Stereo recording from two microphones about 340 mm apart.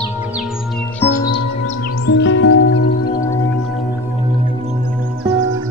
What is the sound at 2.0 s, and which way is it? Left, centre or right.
Music, left.